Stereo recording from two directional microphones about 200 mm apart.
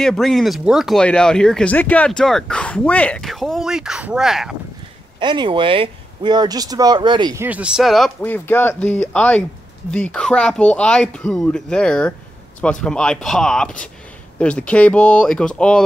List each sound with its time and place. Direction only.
0.0 s speech: centre (ahead or behind)
5.2 s speech: 25° right (ahead or behind)
7.4 s speech: 5° right (ahead or behind)